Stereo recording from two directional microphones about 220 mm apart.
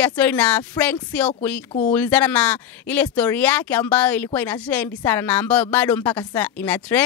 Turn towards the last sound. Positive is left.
turn(degrees=5)  # may be behind; listen again after turning